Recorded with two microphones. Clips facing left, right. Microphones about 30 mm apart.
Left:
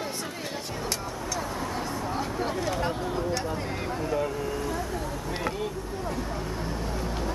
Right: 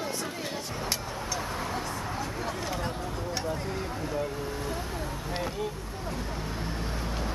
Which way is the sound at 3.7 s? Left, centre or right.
Centre.